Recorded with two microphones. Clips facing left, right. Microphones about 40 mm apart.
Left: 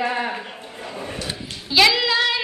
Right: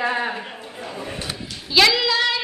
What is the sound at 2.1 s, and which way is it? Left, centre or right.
Singing, centre.